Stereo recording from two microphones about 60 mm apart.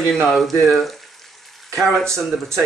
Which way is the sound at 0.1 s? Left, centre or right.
Centre.